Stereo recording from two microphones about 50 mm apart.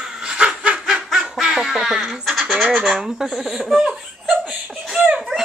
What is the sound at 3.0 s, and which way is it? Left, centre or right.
Speech, centre.